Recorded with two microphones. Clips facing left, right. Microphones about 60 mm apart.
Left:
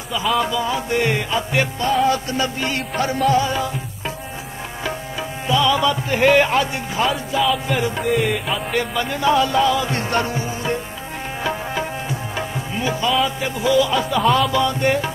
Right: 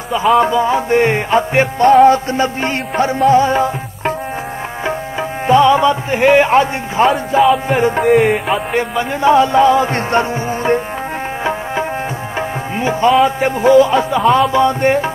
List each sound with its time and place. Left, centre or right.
0.4 s music: right
5.5 s music: right
8.0 s music: right
8.7 s music: right
12.4 s tabla: right
13.2 s music: right